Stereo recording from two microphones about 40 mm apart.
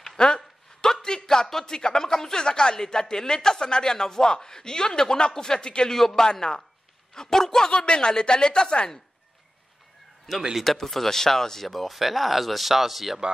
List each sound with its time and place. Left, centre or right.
0.2 s a sound: centre
1.0 s speech: centre
5.9 s speech: centre
7.7 s a woman's voice: left
10.3 s speech: centre